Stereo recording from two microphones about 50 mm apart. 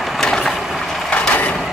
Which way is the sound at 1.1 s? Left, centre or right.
Left.